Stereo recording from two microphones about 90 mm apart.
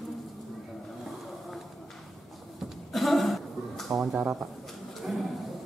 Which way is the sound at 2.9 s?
Centre (ahead or behind).